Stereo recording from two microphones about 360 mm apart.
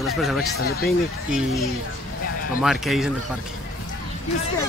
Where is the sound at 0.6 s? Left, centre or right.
Left.